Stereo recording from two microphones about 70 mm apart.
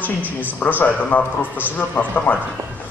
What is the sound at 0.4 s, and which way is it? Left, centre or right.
A man's voice, left.